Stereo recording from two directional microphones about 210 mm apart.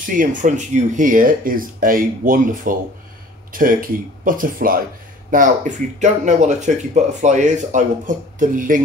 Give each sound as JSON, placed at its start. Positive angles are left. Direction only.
{"t": 0.0, "sound": "speech", "side_deg": -40}